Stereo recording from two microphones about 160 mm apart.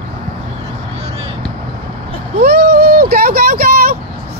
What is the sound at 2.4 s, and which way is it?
Vehicle, 90° right.